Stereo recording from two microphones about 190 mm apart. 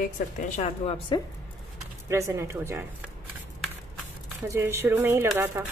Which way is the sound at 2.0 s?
15° right (ahead or behind).